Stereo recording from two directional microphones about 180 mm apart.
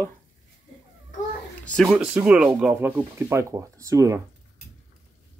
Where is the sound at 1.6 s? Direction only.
5° left (ahead or behind).